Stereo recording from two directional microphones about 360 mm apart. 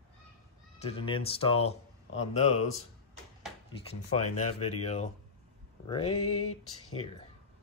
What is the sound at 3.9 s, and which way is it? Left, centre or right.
Speech, centre.